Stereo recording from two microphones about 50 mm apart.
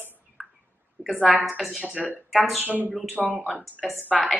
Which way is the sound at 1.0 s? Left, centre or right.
Right.